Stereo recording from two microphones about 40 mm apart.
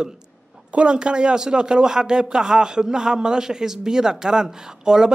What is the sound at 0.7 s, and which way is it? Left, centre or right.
Speech, right.